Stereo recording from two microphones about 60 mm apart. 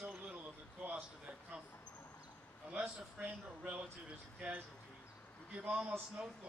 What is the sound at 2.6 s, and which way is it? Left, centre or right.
A man's voice, centre.